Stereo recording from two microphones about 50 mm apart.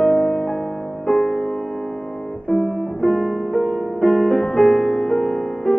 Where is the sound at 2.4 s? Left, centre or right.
Centre.